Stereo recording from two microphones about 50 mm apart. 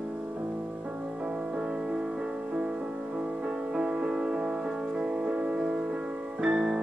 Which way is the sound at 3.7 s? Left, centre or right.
Centre.